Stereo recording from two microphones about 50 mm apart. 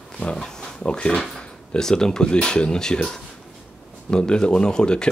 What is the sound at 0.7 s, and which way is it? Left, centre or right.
Speech, centre.